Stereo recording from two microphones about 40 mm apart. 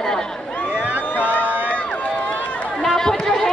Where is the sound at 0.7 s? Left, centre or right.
Right.